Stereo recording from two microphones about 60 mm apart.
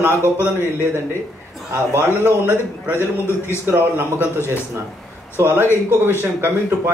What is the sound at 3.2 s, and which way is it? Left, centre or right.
Speech, left.